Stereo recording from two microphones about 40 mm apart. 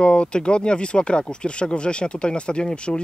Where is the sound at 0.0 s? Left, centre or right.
Left.